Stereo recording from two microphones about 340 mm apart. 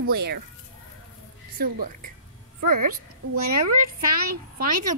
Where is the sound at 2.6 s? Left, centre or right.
Right.